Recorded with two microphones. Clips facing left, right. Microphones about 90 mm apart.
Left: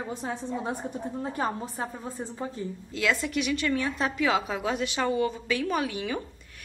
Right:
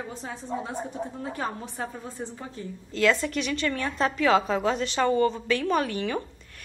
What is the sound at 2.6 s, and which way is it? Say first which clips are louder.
Speech: left 1 dB; 20° left (ahead or behind).